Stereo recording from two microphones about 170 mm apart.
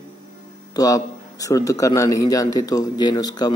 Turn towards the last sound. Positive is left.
turn(degrees=25)  # may be behind; listen again after turning